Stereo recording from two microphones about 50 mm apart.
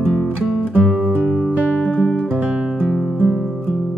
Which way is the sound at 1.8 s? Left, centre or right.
Centre.